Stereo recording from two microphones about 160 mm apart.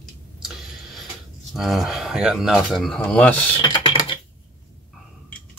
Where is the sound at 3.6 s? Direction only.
30° left (ahead or behind).